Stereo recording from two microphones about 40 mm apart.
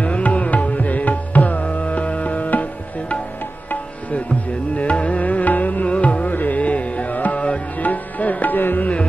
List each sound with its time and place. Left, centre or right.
0.0 s music: left
4.7 s music: left